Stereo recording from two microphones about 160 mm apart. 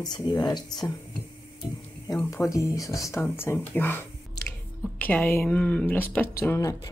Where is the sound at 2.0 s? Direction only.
20° left (ahead or behind).